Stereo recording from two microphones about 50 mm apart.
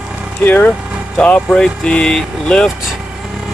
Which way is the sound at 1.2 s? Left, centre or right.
Left.